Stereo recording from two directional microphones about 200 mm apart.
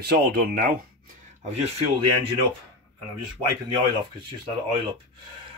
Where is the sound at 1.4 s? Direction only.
30° right (ahead or behind).